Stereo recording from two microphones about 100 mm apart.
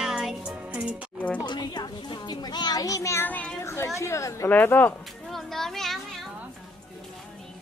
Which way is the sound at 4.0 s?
30° left (ahead or behind).